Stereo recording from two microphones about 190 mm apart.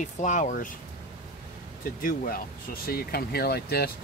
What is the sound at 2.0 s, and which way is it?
Speech, 50° left (ahead or behind).